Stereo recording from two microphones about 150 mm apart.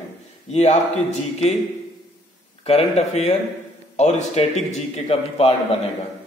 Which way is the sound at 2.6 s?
45° left (ahead or behind).